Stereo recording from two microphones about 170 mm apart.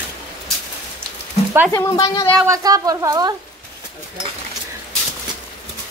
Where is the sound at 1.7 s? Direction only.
20° left (ahead or behind).